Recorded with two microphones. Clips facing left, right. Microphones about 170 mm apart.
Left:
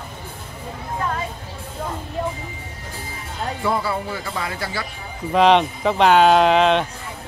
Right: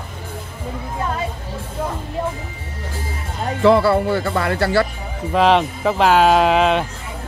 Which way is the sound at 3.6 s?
75° right (ahead or behind).